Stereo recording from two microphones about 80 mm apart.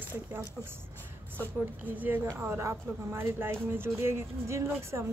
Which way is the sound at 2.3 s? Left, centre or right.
Right.